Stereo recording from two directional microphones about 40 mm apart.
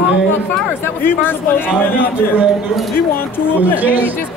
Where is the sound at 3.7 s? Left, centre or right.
Right.